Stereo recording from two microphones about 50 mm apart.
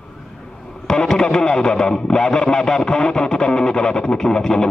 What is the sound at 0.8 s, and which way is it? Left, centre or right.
Speech, centre.